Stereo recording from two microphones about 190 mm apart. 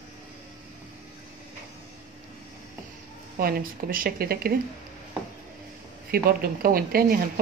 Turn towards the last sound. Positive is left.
turn(degrees=-50)  # may be behind; listen again after turning